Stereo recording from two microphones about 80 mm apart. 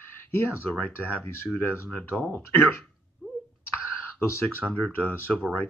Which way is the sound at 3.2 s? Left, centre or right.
Centre.